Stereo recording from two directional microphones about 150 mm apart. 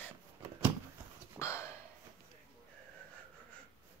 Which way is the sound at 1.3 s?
20° left (ahead or behind).